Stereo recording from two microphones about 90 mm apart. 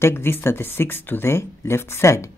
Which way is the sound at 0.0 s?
25° left (ahead or behind).